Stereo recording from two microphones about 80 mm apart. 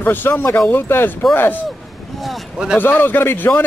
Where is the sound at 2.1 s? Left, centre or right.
Centre.